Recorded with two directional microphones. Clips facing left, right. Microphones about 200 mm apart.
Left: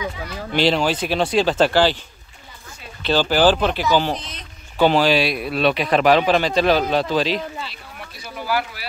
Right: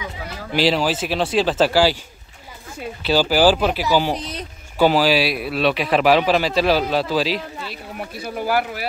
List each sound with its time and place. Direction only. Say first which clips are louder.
0.5 s speech: even; 5° right (ahead or behind)
3.0 s speech: right 1 dB; 5° right (ahead or behind)
4.2 s speech: right 8 dB; 35° right (ahead or behind)
4.7 s speech: even; 5° right (ahead or behind)
8.2 s speech: right 3 dB; 50° right (ahead or behind)